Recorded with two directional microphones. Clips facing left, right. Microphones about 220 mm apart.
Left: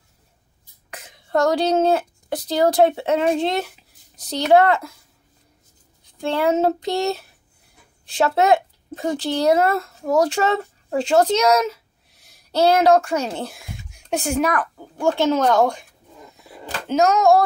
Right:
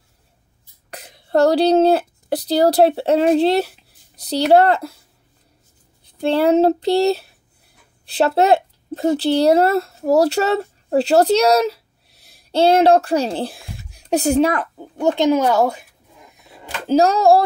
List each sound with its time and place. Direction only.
0.8 s a woman's voice: 35° right (ahead or behind)
6.2 s speech: 35° right (ahead or behind); by 15.8 s 5° right (ahead or behind)
16.8 s speech: 35° right (ahead or behind)